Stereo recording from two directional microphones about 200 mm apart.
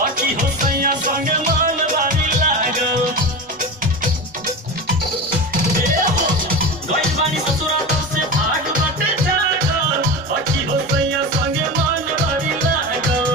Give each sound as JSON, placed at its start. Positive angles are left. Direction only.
{"t": 0.0, "sound": "music", "side_deg": -45}